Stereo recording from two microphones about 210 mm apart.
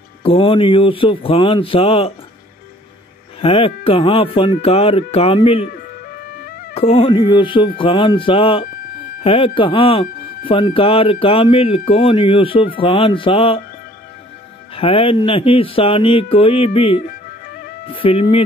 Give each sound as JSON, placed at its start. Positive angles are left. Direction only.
{"t": 0.2, "sound": "speech", "side_deg": 25}
{"t": 3.3, "sound": "speech", "side_deg": 25}
{"t": 6.7, "sound": "speech", "side_deg": 30}
{"t": 14.8, "sound": "speech", "side_deg": 25}